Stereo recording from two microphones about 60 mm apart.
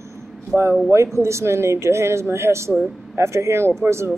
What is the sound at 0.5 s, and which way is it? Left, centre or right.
Speech, right.